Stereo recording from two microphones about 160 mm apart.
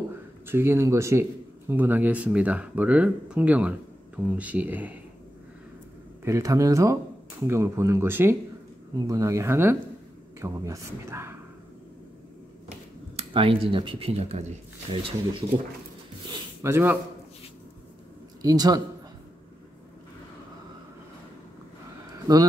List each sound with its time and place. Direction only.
0.5 s speech: 15° right (ahead or behind)
6.2 s speech: 20° right (ahead or behind)
12.6 s a sound: 40° right (ahead or behind)
14.9 s speech: 35° right (ahead or behind)
16.6 s speech: 15° right (ahead or behind)
18.4 s speech: 25° right (ahead or behind)